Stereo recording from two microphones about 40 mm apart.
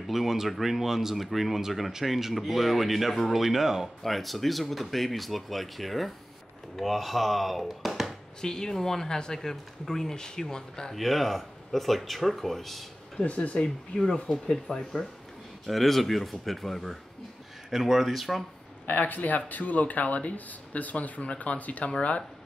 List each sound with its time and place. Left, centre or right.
0.0 s speech: centre
4.0 s speech: centre
8.4 s speech: centre
11.0 s speech: centre
13.2 s speech: left
14.5 s speech: centre
18.9 s speech: left